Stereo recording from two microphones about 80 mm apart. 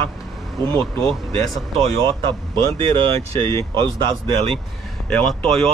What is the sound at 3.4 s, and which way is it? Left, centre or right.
Speech, left.